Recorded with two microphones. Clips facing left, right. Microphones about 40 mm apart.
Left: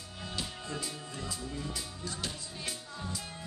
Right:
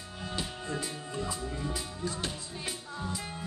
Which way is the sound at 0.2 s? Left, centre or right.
Centre.